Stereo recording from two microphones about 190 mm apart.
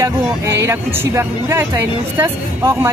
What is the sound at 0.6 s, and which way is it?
A woman's voice, 15° right (ahead or behind).